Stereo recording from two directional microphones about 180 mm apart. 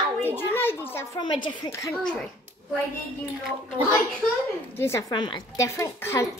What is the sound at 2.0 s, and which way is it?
Speech, 5° left (ahead or behind).